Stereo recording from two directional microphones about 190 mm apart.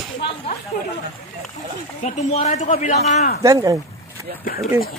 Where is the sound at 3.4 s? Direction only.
20° right (ahead or behind).